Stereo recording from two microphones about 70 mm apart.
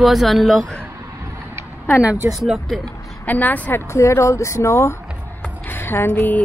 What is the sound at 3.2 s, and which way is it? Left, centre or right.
Speech, left.